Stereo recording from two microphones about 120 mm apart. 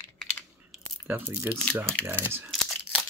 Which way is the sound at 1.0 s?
10° right (ahead or behind).